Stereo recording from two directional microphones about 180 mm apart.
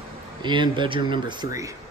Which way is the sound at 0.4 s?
25° right (ahead or behind).